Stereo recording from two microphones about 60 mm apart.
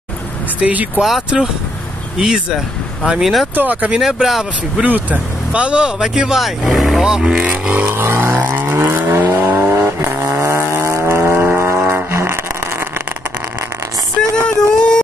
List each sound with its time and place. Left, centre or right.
0.6 s speech: right
1.3 s speech: centre
3.5 s speech: right
4.0 s speech: centre
4.8 s speech: right
7.7 s vehicle: right
10.4 s chainsaw: right
11.5 s vehicle: right
11.9 s a sound: right
14.3 s a sound: centre